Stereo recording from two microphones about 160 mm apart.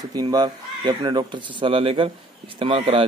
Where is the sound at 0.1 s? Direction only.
25° right (ahead or behind).